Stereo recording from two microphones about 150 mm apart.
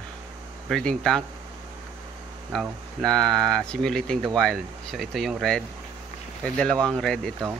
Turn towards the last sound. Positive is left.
turn(degrees=5)  # may be behind; listen again after turning